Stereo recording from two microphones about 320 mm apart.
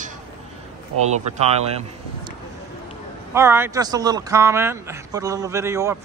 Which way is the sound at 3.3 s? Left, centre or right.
Centre.